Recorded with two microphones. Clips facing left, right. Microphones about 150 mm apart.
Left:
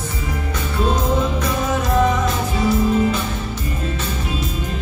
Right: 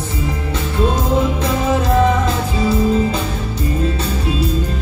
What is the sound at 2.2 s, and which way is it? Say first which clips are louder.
Music: right 1 dB; 30° right (ahead or behind).